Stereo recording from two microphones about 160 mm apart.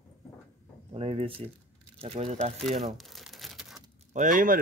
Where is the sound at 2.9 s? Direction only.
Centre (ahead or behind).